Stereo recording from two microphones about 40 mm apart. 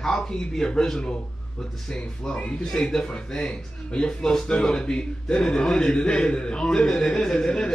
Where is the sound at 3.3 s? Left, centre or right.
Left.